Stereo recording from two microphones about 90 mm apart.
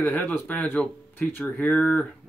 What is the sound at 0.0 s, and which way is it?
Speech, 20° left (ahead or behind).